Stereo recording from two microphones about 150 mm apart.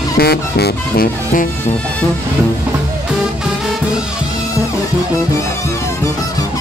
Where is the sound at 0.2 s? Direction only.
90° left; by 1.5 s 75° left (ahead or behind).